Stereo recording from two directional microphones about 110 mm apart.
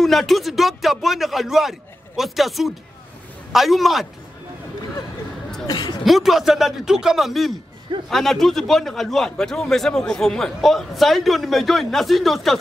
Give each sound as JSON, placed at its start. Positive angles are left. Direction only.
{"t": 0.0, "sound": "a man's voice", "side_deg": 0}
{"t": 5.7, "sound": "a woman's voice", "side_deg": 35}
{"t": 6.0, "sound": "a man's voice", "side_deg": 0}